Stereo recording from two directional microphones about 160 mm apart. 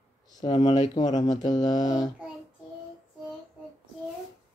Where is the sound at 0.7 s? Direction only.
45° left (ahead or behind).